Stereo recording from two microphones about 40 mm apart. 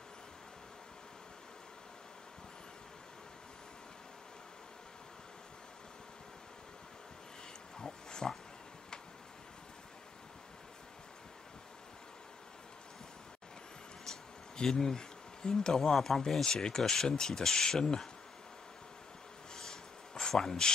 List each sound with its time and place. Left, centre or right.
7.8 s pig: centre
14.6 s speech: centre
16.4 s speech: centre
19.5 s a sound: centre
20.4 s speech: centre